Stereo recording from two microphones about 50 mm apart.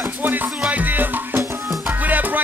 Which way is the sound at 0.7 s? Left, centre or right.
Right.